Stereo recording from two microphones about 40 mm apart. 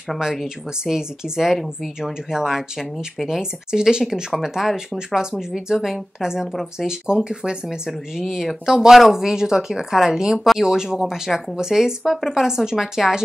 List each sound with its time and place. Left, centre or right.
0.2 s speech: centre
6.5 s speech: centre
6.9 s speech: centre